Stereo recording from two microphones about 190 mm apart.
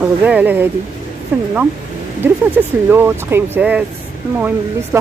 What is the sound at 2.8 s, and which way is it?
Speech, 10° right (ahead or behind).